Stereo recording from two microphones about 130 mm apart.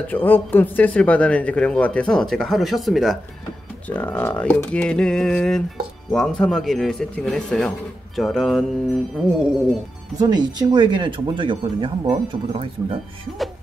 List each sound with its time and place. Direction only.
0.1 s speech: 15° left (ahead or behind)
3.8 s speech: 10° left (ahead or behind)
10.1 s speech: 30° right (ahead or behind)